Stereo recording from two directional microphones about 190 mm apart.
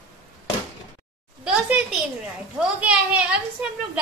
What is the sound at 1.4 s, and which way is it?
A child's voice, 5° right (ahead or behind).